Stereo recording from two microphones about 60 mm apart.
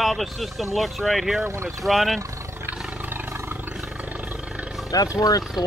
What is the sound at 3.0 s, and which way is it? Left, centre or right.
Roar, right.